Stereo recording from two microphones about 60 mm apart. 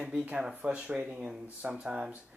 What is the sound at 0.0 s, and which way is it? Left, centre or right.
Speech, centre.